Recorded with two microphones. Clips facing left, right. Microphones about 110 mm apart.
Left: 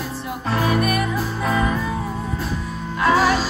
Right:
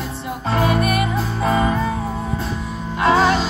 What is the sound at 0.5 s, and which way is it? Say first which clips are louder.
Music: right 2 dB; 25° right (ahead or behind).